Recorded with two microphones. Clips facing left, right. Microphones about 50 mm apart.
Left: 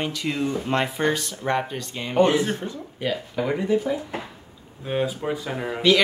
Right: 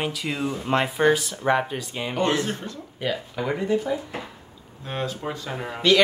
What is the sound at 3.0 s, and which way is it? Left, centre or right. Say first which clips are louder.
Speech: left 1 dB; centre.